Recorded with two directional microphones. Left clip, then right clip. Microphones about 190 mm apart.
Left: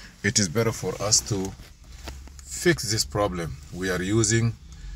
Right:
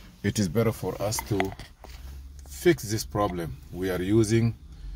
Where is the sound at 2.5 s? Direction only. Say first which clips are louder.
Left 1 dB; 15° right (ahead or behind).